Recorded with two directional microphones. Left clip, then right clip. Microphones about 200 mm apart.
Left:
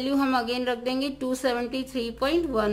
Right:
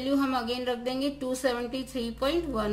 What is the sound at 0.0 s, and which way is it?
A woman's voice, 35° left (ahead or behind).